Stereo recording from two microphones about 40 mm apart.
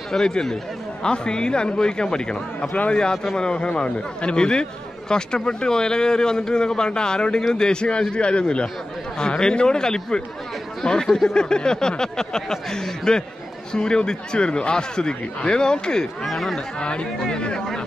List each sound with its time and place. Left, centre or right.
0.1 s a man's voice: centre
16.3 s speech: centre
16.8 s a man's voice: left